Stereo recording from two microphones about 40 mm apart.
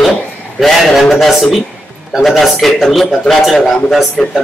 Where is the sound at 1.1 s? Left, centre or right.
Centre.